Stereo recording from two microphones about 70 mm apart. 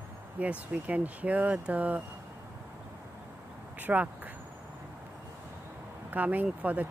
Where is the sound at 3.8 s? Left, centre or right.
Right.